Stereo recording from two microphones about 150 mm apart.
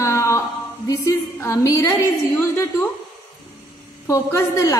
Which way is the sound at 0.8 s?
20° left (ahead or behind).